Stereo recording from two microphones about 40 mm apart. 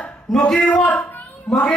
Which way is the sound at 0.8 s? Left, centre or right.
Left.